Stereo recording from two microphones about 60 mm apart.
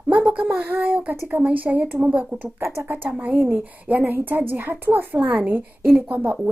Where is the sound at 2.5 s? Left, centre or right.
Right.